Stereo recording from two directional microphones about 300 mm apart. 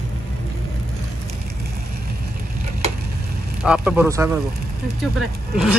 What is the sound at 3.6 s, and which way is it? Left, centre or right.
Speech, centre.